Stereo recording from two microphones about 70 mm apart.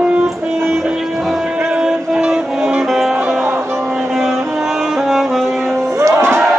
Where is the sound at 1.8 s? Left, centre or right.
Centre.